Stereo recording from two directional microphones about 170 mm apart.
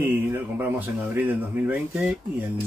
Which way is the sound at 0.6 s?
10° right (ahead or behind).